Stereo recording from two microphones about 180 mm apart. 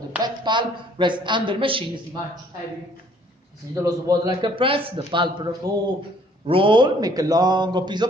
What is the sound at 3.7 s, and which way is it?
A woman's voice, 20° right (ahead or behind).